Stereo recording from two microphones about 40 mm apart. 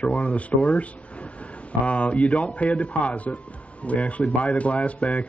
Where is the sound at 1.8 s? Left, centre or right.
Left.